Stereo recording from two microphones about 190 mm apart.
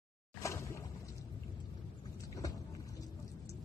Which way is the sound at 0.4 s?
15° left (ahead or behind).